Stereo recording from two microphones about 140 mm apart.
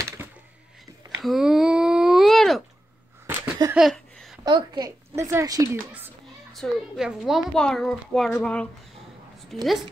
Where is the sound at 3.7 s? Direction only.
Centre (ahead or behind).